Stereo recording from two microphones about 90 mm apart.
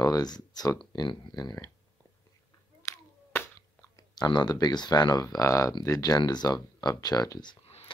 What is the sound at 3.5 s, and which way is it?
Speech, 45° left (ahead or behind).